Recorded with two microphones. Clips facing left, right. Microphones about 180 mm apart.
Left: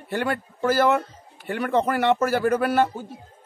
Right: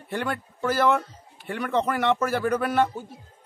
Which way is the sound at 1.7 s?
45° left (ahead or behind).